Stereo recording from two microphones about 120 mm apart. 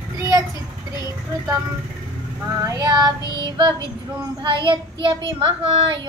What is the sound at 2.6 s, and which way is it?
Child singing, 30° right (ahead or behind).